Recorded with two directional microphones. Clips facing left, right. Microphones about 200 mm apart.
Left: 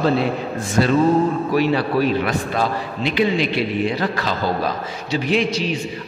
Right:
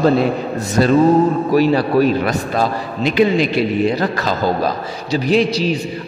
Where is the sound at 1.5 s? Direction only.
40° right (ahead or behind).